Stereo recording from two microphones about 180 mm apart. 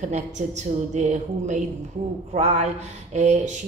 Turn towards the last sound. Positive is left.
turn(degrees=-40)  # may be behind; listen again after turning